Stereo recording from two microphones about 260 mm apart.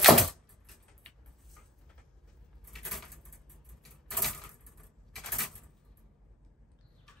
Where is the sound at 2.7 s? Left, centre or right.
Centre.